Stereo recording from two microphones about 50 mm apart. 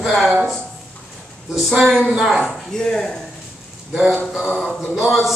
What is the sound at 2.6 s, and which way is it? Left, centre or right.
Speech, centre.